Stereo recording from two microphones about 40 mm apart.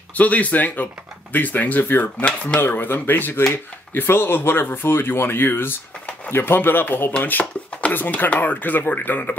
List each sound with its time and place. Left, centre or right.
0.1 s speech: left
2.2 s speech: left
2.6 s speech: left
5.5 s speech: left
7.9 s speech: left